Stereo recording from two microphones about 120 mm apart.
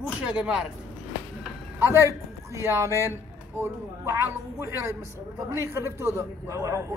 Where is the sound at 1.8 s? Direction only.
25° right (ahead or behind).